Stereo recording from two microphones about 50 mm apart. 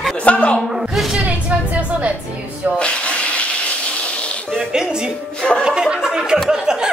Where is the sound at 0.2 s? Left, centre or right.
Left.